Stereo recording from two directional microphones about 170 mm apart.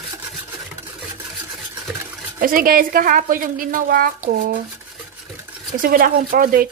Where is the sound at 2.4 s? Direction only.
55° right (ahead or behind).